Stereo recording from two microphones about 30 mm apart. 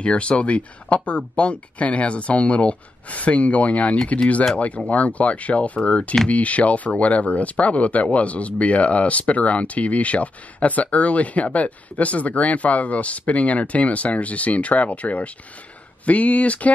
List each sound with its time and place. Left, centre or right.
0.0 s speech: left